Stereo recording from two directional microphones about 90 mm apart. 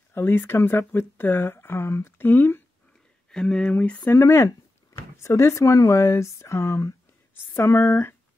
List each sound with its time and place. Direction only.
0.1 s speech: 25° left (ahead or behind)
3.3 s speech: 10° left (ahead or behind)
3.7 s a sound: 15° left (ahead or behind)
4.1 s speech: 35° left (ahead or behind)